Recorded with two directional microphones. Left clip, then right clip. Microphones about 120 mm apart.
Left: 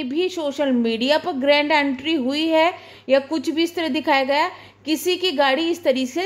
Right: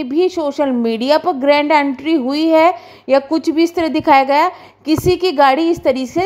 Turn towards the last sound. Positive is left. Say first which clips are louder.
# right 5 dB
turn(degrees=-30)  # may be behind; listen again after turning